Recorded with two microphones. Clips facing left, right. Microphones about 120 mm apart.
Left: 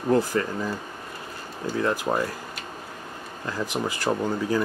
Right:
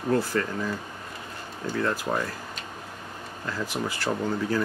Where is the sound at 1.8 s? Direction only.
15° left (ahead or behind).